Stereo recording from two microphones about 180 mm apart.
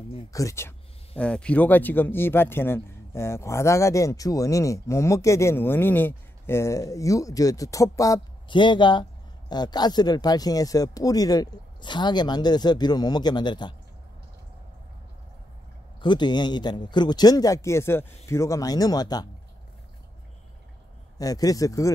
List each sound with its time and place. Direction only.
0.3 s speech: 15° left (ahead or behind)
16.0 s speech: 25° left (ahead or behind)
21.2 s speech: 20° left (ahead or behind)